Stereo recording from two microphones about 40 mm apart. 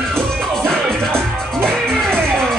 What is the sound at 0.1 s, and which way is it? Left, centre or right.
Music, centre.